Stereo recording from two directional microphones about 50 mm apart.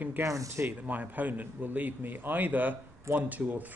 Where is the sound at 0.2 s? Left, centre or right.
Right.